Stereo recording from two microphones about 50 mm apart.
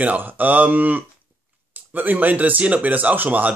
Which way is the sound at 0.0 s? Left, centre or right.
Right.